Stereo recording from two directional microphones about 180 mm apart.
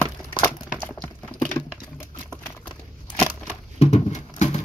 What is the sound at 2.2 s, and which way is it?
Typewriter, 10° left (ahead or behind).